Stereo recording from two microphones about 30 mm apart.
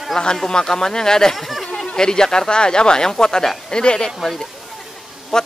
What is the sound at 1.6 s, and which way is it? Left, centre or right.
Speech, left.